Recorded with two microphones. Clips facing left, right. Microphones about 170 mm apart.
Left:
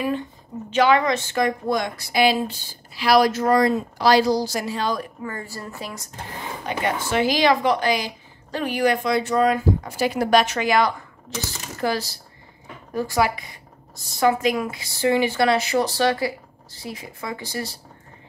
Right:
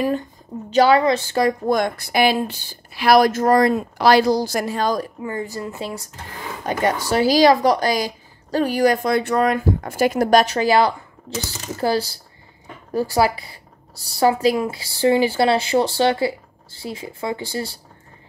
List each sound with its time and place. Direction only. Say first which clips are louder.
0.7 s speech: right 3 dB; 35° right (ahead or behind)
1.7 s speech: right 4 dB; 55° right (ahead or behind)
5.2 s speech: right 5 dB; 20° right (ahead or behind)
6.6 s speech: right 5 dB; 40° right (ahead or behind)